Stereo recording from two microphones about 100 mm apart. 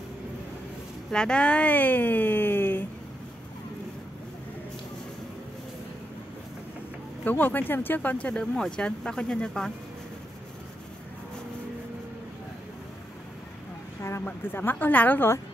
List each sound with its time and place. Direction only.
1.1 s speech: 10° left (ahead or behind)
7.2 s speech: 20° left (ahead or behind)
14.2 s speech: 20° left (ahead or behind)